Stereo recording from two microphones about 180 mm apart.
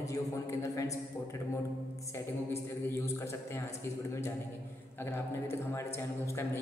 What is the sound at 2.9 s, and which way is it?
Speech, 15° left (ahead or behind).